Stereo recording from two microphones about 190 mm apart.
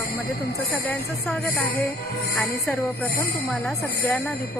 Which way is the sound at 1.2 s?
Centre (ahead or behind).